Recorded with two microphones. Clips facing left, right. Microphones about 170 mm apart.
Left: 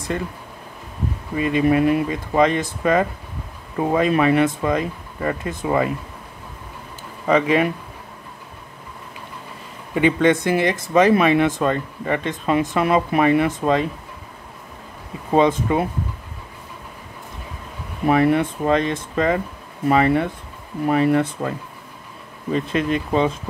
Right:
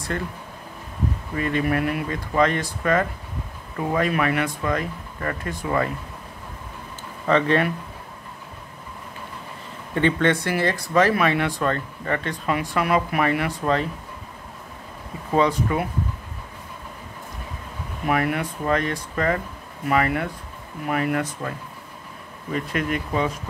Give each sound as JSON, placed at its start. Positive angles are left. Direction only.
{"t": 1.3, "sound": "speech", "side_deg": 20}
{"t": 7.2, "sound": "speech", "side_deg": 10}
{"t": 9.9, "sound": "speech", "side_deg": 10}
{"t": 15.3, "sound": "speech", "side_deg": 25}
{"t": 18.0, "sound": "speech", "side_deg": 25}
{"t": 22.5, "sound": "speech", "side_deg": 25}